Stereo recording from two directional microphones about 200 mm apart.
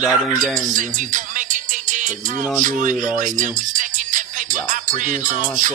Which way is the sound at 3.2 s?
40° right (ahead or behind).